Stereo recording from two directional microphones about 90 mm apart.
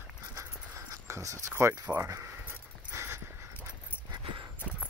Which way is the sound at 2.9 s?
30° right (ahead or behind).